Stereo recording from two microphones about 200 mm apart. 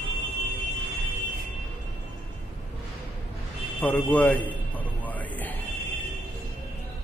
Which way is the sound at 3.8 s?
10° left (ahead or behind).